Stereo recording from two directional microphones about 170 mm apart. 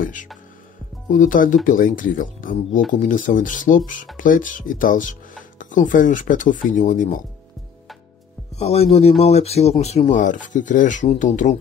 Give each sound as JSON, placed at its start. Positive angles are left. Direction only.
{"t": 0.0, "sound": "speech", "side_deg": 50}
{"t": 8.5, "sound": "speech", "side_deg": 35}